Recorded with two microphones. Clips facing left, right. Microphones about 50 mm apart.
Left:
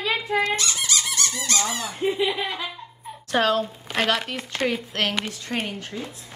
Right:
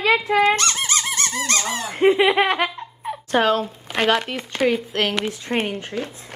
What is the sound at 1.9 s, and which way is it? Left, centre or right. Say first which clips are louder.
Speech: right 10 dB; right.